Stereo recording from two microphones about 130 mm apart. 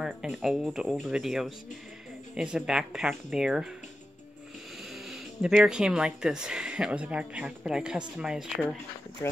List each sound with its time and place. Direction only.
0.0 s speech: 5° right (ahead or behind)
5.1 s speech: 5° right (ahead or behind)
9.2 s speech: 20° left (ahead or behind)